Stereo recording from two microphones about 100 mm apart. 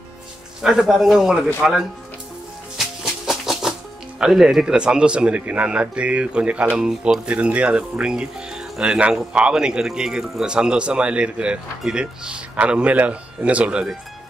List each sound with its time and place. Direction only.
0.6 s a man's voice: 5° right (ahead or behind)
2.8 s music: 5° right (ahead or behind)
4.2 s speech: 5° right (ahead or behind)